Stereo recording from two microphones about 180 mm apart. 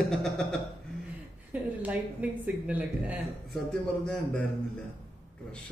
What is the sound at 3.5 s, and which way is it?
Speech, 5° left (ahead or behind).